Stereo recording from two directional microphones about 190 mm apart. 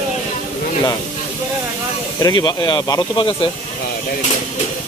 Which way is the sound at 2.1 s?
20° left (ahead or behind).